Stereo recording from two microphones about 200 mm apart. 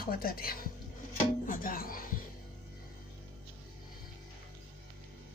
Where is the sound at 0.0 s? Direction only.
50° left (ahead or behind).